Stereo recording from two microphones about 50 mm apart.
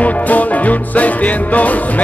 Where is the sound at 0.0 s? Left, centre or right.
Left.